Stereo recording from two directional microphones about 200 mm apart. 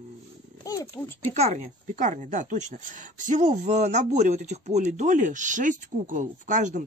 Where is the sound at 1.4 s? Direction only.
35° right (ahead or behind).